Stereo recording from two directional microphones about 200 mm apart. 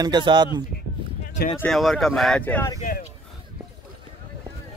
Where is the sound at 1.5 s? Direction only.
5° left (ahead or behind).